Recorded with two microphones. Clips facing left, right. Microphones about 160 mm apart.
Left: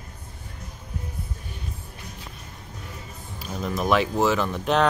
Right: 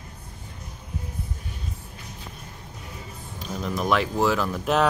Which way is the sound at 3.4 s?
Centre (ahead or behind).